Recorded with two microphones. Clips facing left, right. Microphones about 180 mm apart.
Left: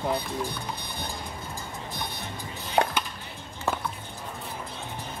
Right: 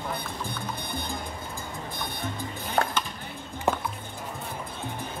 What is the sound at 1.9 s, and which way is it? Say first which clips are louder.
Music: right 4 dB; 50° right (ahead or behind).